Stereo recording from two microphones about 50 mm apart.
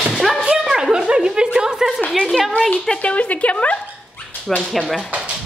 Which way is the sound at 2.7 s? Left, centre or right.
Left.